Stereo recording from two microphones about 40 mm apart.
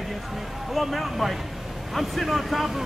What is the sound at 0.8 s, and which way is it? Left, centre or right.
Speech, centre.